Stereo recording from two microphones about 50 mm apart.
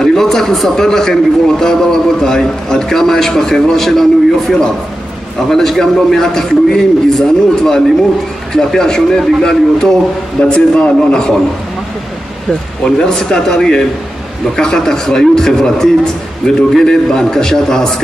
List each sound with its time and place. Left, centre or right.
0.0 s a man's voice: centre
12.8 s a man's voice: centre